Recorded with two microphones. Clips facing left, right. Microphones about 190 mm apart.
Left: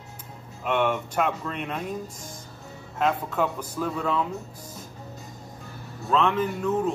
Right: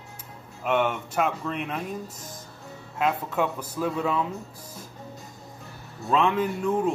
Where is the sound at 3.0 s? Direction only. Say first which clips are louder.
Left 1 dB; 5° right (ahead or behind).